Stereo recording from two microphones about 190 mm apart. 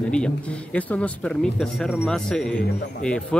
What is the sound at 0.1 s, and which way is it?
A man's voice, 5° left (ahead or behind).